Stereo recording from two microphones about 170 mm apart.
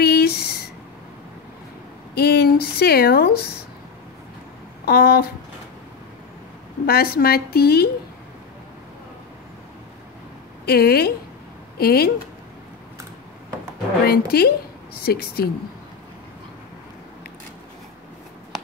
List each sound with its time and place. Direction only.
0.0 s a sound: 65° left (ahead or behind)
2.1 s speech: 70° left (ahead or behind)
4.8 s a woman's voice: 65° left (ahead or behind)
6.9 s a woman's voice: 65° left (ahead or behind)
10.6 s a woman's voice: 65° left (ahead or behind)
14.0 s a woman's voice: 65° left (ahead or behind)